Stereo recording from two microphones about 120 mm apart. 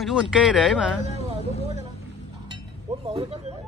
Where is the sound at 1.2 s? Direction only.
60° left (ahead or behind).